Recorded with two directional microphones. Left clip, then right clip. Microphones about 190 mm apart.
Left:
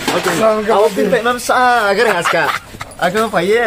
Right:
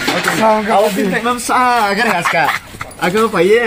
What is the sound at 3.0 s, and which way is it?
Speech, 10° left (ahead or behind).